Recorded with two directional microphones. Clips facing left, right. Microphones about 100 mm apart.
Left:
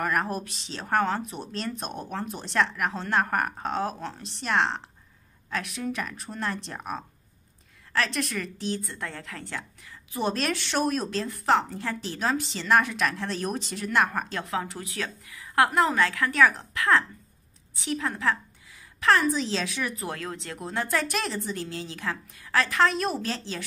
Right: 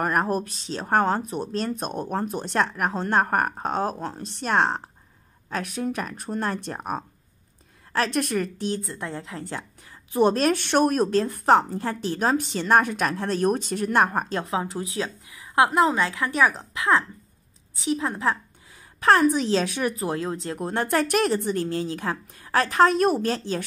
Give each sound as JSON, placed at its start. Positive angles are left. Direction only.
{"t": 0.0, "sound": "a woman's voice", "side_deg": -35}
{"t": 8.8, "sound": "a woman's voice", "side_deg": -25}
{"t": 10.1, "sound": "a woman's voice", "side_deg": -40}
{"t": 14.6, "sound": "a woman's voice", "side_deg": -25}
{"t": 18.9, "sound": "a woman's voice", "side_deg": -40}
{"t": 20.0, "sound": "a woman's voice", "side_deg": -30}
{"t": 20.5, "sound": "a woman's voice", "side_deg": -45}